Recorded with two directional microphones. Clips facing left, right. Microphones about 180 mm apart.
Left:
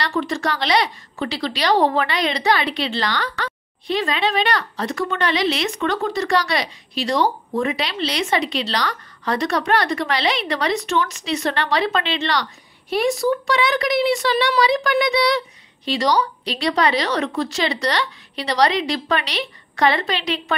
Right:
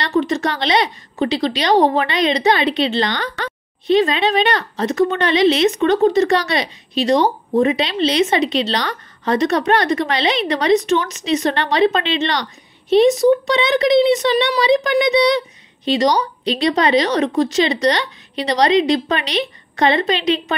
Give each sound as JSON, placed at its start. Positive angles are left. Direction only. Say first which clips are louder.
{"t": 0.0, "sound": "speech", "louder": "right 5 dB", "side_deg": -20}